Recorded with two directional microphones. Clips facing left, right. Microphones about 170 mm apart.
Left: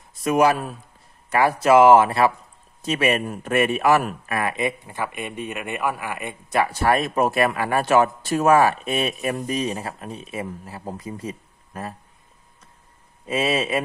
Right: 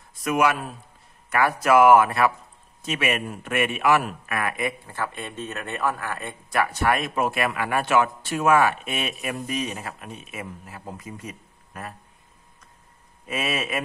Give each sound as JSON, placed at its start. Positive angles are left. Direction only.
{"t": 0.2, "sound": "a man's voice", "side_deg": 35}
{"t": 13.3, "sound": "speech", "side_deg": 30}